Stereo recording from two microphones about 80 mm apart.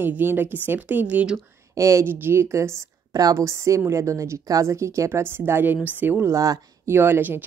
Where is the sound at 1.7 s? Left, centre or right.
Right.